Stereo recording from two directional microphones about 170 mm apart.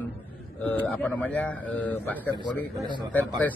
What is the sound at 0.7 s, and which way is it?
A man's voice, 10° left (ahead or behind).